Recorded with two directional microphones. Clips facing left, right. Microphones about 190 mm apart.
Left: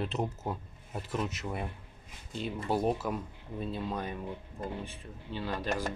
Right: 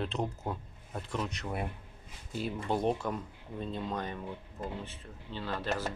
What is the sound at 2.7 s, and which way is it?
Speech, 5° left (ahead or behind).